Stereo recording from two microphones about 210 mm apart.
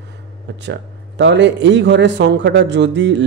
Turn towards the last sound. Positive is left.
turn(degrees=-55)  # may be behind; listen again after turning